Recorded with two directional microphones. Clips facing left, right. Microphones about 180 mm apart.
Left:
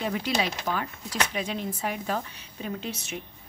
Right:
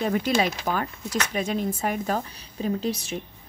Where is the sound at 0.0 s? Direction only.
50° right (ahead or behind).